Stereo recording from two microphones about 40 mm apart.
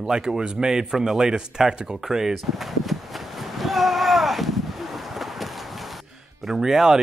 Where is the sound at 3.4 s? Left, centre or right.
Centre.